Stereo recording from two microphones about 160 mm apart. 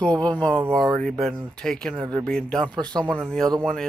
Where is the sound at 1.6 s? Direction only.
5° left (ahead or behind).